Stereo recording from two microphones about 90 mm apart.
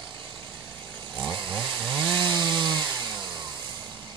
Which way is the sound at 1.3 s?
55° right (ahead or behind).